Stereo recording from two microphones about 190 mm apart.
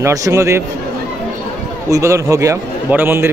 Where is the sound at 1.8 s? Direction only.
15° right (ahead or behind).